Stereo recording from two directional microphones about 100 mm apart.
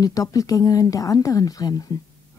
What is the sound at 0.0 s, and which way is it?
Speech, 35° left (ahead or behind).